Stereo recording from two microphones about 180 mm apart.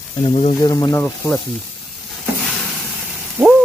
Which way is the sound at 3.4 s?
10° right (ahead or behind).